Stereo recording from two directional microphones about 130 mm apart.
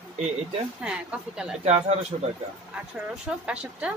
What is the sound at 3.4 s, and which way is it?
Speech, 10° right (ahead or behind).